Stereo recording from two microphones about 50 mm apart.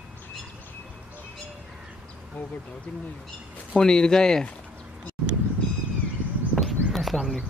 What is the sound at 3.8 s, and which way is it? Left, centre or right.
Speech, centre.